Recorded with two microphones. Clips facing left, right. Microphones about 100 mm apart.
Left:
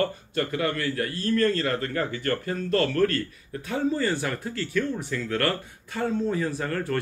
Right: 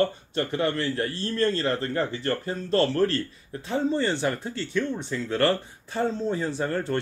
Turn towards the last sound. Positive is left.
turn(degrees=-25)  # may be behind; listen again after turning